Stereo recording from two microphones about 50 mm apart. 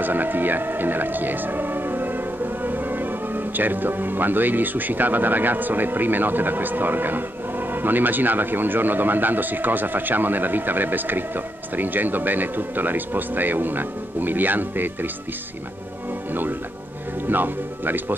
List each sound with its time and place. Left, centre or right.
0.0 s speech: right
17.3 s speech: right